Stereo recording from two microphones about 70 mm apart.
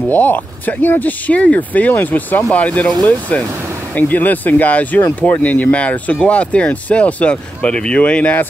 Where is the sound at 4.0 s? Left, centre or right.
Left.